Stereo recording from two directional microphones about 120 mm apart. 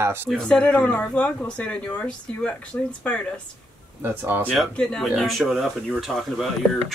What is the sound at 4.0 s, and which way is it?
Speech, 15° right (ahead or behind).